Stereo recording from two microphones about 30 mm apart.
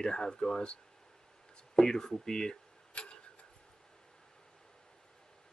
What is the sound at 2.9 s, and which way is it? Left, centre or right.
Tick-tock, left.